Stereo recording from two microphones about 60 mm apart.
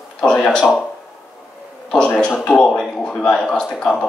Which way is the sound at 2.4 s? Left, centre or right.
Centre.